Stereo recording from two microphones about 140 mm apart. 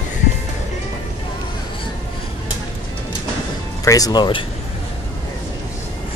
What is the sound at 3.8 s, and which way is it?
Speech, 25° left (ahead or behind).